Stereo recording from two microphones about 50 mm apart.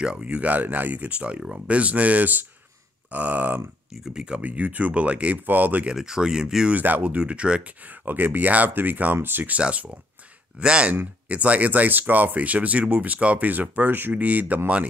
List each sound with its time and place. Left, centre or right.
0.0 s speech: right
4.1 s speech: centre
4.4 s speech: right
5.9 s speech: centre
6.7 s speech: right
7.0 s speech: right
7.8 s speech: right
9.5 s speech: right